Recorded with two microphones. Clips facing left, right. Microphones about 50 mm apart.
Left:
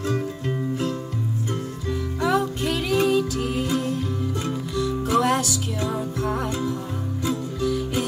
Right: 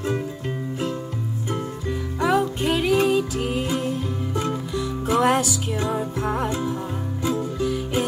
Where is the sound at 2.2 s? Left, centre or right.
Right.